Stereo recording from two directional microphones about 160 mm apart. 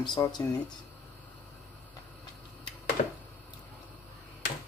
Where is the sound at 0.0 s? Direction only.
25° left (ahead or behind).